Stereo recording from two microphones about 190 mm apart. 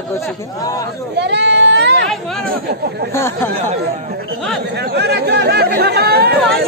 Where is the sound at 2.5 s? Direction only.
60° right (ahead or behind).